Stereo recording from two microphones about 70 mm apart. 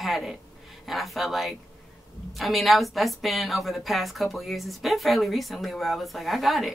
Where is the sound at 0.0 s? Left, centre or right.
Centre.